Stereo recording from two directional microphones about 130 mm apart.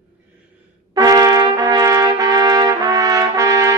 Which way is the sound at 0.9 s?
25° right (ahead or behind).